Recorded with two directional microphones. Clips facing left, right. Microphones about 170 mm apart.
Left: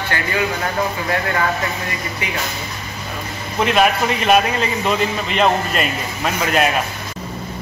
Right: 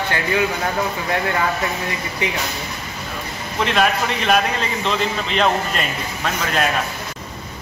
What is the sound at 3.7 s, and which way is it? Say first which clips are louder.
A man's voice: left 3 dB; 5° left (ahead or behind).